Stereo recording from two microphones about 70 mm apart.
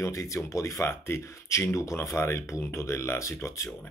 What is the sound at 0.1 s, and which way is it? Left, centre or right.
Speech, left.